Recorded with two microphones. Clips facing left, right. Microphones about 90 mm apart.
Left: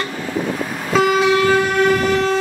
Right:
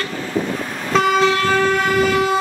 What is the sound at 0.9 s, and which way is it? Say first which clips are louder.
Vehicle: even; 5° left (ahead or behind).